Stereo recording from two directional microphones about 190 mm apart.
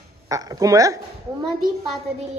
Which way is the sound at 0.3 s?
20° right (ahead or behind).